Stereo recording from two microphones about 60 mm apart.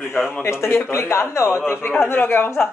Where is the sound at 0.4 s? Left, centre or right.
Left.